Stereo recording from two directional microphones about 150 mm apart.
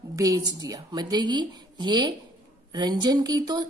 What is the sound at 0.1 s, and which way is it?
A woman's voice, 25° right (ahead or behind).